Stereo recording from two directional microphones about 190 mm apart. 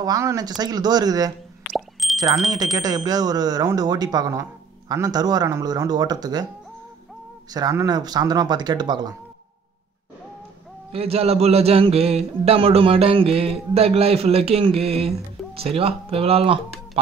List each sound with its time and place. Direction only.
0.0 s speech: 15° right (ahead or behind)
1.6 s plop: centre (ahead or behind)
2.4 s speech: 20° right (ahead or behind)
7.5 s speech: 20° right (ahead or behind)
10.9 s a man's voice: 30° right (ahead or behind)